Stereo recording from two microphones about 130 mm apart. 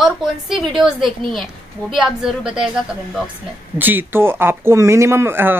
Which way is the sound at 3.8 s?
15° right (ahead or behind).